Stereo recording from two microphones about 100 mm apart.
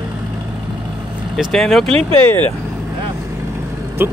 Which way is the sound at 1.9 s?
70° right (ahead or behind).